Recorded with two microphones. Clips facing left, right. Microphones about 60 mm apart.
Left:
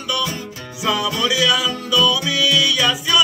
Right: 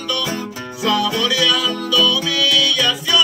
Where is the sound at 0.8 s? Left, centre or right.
Centre.